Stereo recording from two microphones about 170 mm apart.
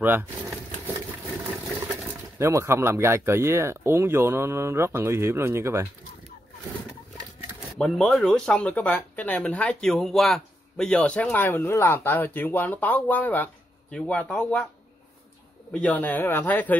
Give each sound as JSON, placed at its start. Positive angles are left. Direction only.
{"t": 0.0, "sound": "speech", "side_deg": -10}
{"t": 2.3, "sound": "speech", "side_deg": -15}
{"t": 7.8, "sound": "speech", "side_deg": 5}
{"t": 15.7, "sound": "speech", "side_deg": 10}